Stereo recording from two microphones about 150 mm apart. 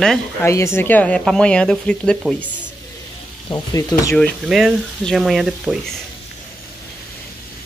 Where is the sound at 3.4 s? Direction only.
30° left (ahead or behind).